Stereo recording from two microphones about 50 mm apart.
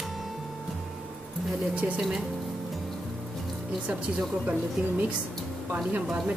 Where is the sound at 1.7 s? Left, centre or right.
Right.